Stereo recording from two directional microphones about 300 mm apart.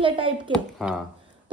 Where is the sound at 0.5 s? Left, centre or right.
Centre.